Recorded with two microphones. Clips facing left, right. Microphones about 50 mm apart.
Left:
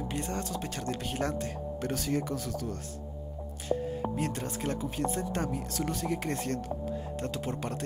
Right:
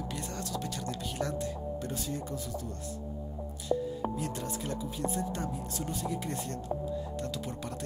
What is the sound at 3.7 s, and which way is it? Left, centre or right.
Music, left.